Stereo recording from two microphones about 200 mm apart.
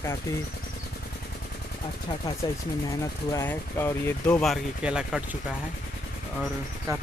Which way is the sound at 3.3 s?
10° left (ahead or behind).